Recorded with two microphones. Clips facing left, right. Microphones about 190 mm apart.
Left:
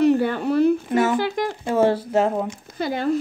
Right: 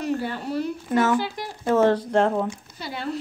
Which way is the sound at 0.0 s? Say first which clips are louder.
Left 9 dB; 60° left (ahead or behind).